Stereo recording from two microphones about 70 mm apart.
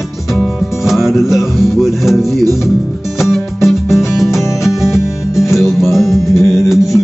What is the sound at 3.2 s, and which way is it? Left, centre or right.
Music, centre.